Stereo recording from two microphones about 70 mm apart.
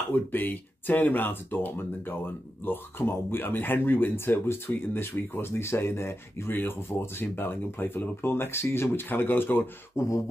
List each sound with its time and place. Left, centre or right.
0.1 s speech: left
9.9 s beatboxing: left